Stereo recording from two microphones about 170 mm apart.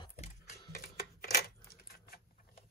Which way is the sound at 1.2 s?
60° left (ahead or behind).